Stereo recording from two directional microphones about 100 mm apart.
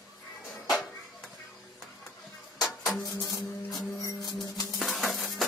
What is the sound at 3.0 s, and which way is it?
Music, 35° left (ahead or behind).